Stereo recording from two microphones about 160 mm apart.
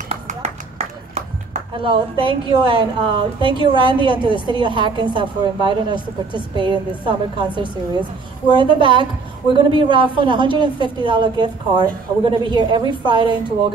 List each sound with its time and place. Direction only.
0.1 s a man's voice: 40° right (ahead or behind)